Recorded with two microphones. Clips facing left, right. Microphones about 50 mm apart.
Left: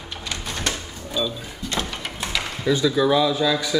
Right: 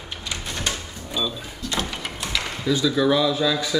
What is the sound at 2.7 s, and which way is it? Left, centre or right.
Speech, centre.